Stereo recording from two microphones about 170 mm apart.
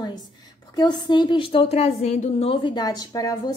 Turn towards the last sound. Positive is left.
turn(degrees=20)  # may be behind; listen again after turning